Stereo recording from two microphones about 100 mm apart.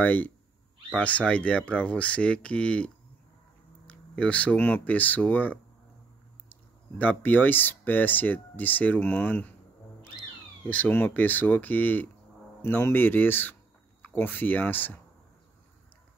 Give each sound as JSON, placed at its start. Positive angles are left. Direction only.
{"t": 0.0, "sound": "speech", "side_deg": 15}
{"t": 10.6, "sound": "speech", "side_deg": 15}